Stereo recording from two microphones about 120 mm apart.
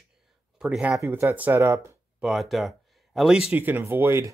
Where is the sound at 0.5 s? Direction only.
5° right (ahead or behind).